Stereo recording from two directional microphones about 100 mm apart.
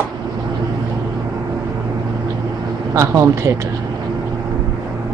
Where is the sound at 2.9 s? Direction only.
30° right (ahead or behind).